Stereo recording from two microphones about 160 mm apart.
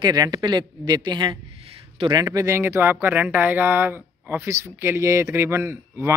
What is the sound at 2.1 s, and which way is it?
Speech, 20° right (ahead or behind).